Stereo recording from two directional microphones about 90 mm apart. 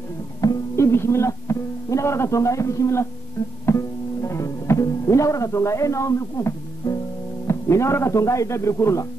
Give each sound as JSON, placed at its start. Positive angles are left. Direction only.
{"t": 0.4, "sound": "music", "side_deg": 40}
{"t": 0.7, "sound": "speech", "side_deg": 30}
{"t": 3.6, "sound": "music", "side_deg": 30}
{"t": 7.4, "sound": "a man's voice", "side_deg": 30}